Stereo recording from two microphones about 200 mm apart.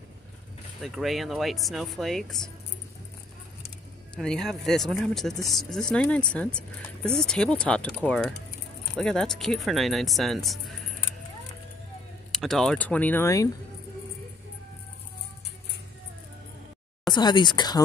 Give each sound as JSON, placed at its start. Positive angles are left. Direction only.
{"t": 0.7, "sound": "speech", "side_deg": 0}
{"t": 4.1, "sound": "speech", "side_deg": 5}
{"t": 12.3, "sound": "speech", "side_deg": 0}
{"t": 17.1, "sound": "speech", "side_deg": 20}